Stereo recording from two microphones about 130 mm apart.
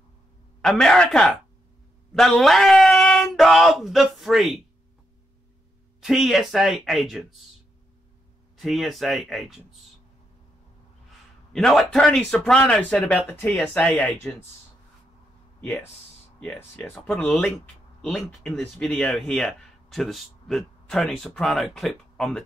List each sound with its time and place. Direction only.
0.6 s speech: 5° left (ahead or behind)
2.1 s a sound: 5° left (ahead or behind)
5.9 s speech: centre (ahead or behind)
8.5 s speech: centre (ahead or behind)
11.5 s speech: centre (ahead or behind)
16.3 s speech: 10° left (ahead or behind)